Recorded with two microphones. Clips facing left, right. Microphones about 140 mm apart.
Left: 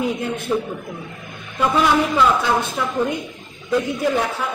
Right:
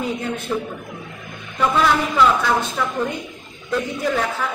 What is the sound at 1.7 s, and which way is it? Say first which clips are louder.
Speech: left 2 dB; 15° left (ahead or behind).